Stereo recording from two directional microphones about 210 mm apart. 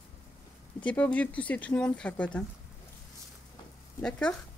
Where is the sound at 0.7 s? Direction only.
5° left (ahead or behind).